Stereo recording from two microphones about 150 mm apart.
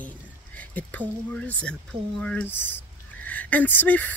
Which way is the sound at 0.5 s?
10° left (ahead or behind).